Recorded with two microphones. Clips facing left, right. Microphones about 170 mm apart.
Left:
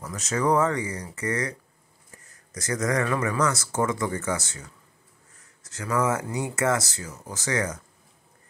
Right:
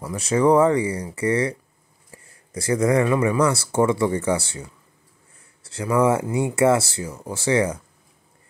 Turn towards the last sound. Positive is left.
turn(degrees=-30)  # may be behind; listen again after turning